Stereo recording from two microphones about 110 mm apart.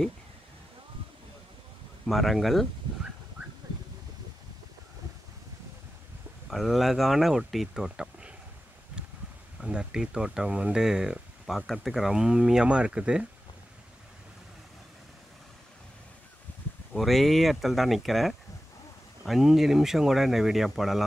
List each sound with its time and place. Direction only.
2.0 s speech: centre (ahead or behind)
6.5 s speech: centre (ahead or behind)
9.0 s a sound: 10° right (ahead or behind)
9.6 s speech: 10° right (ahead or behind)
16.9 s speech: centre (ahead or behind)